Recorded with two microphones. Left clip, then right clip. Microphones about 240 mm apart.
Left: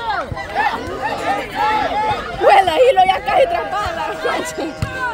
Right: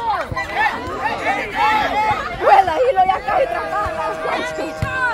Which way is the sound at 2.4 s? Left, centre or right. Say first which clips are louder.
Left 2 dB; left.